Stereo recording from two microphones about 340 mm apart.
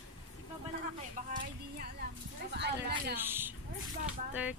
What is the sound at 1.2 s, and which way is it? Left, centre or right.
Speech, right.